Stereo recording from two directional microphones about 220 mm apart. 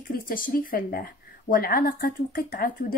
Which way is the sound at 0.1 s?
40° left (ahead or behind).